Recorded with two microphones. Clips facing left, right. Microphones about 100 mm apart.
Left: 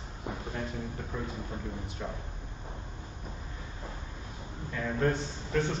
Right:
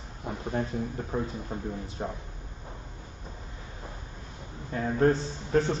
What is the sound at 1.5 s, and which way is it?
Speech, 35° right (ahead or behind).